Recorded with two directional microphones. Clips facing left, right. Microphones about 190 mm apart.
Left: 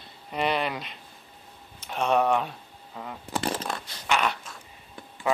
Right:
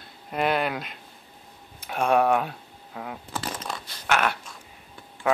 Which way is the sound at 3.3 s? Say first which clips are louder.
Left 6 dB; 30° left (ahead or behind).